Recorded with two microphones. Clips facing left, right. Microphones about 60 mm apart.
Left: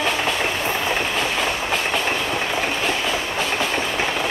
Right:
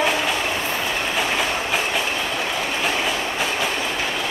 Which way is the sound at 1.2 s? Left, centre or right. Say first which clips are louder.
Even; centre.